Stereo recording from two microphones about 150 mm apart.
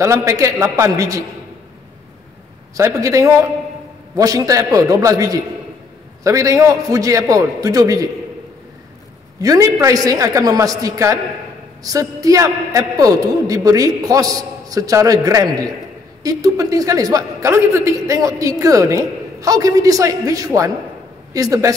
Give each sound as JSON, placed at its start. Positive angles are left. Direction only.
{"t": 0.0, "sound": "a man's voice", "side_deg": -20}
{"t": 2.7, "sound": "a man's voice", "side_deg": -20}
{"t": 9.4, "sound": "a man's voice", "side_deg": -25}